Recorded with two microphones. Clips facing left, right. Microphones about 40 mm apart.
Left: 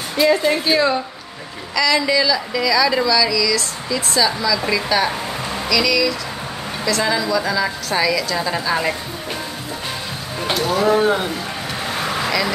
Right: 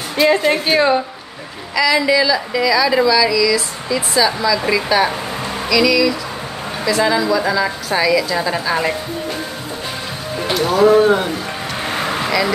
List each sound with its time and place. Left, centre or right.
0.3 s a woman's voice: right
1.8 s speech: centre
10.6 s speech: centre
12.3 s speech: centre